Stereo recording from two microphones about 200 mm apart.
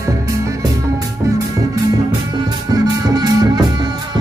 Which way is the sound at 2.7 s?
20° right (ahead or behind).